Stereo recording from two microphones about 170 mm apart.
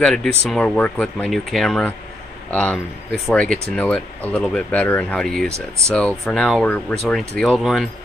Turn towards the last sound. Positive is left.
turn(degrees=0)  # may be behind; listen again after turning